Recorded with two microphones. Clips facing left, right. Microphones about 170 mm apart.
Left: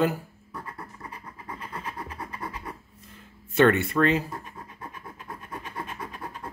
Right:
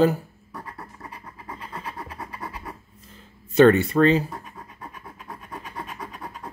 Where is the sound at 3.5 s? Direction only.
30° right (ahead or behind).